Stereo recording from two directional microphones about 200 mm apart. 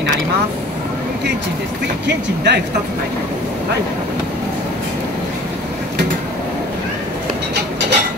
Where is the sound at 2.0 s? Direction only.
60° right (ahead or behind).